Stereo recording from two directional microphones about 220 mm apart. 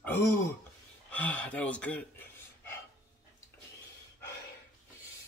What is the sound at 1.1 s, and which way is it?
Speech, 5° left (ahead or behind).